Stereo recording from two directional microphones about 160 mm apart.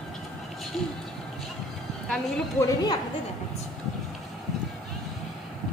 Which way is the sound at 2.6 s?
25° left (ahead or behind).